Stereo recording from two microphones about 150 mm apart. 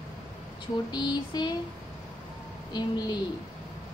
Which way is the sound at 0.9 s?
30° left (ahead or behind).